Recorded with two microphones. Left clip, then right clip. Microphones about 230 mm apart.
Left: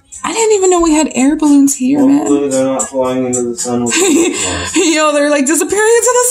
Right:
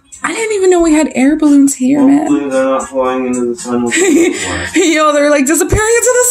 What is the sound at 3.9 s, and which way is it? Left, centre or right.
Speech, centre.